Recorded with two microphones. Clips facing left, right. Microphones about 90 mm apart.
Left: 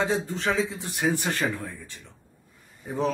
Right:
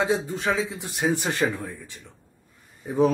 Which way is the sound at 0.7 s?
20° right (ahead or behind).